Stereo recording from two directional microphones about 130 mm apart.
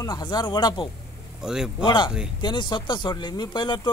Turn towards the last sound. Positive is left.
turn(degrees=35)  # may be behind; listen again after turning